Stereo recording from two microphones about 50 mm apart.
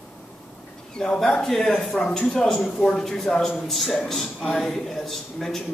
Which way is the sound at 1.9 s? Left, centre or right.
Left.